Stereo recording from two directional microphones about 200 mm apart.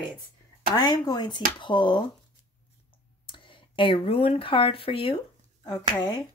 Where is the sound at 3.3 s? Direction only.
25° left (ahead or behind).